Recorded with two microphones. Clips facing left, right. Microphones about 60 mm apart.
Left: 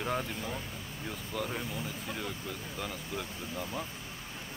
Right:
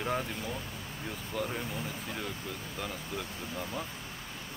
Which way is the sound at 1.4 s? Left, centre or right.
Centre.